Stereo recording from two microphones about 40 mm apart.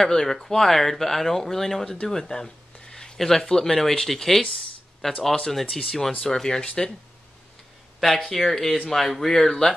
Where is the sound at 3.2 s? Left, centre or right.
Centre.